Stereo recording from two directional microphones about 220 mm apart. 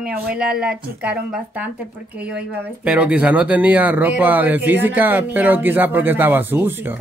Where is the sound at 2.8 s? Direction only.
5° right (ahead or behind).